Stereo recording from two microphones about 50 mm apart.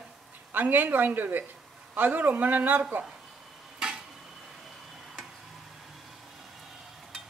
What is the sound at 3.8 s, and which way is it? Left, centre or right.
Tick-tock, centre.